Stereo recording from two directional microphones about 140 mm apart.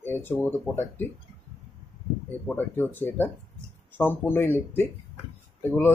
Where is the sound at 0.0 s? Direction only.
15° left (ahead or behind).